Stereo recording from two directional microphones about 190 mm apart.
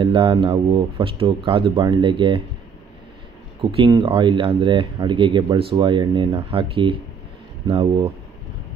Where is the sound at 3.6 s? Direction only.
25° right (ahead or behind).